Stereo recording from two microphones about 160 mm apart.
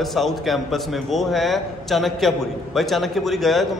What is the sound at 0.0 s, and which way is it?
A man's voice, centre (ahead or behind).